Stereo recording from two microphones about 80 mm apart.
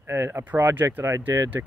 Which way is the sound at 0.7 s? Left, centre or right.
Right.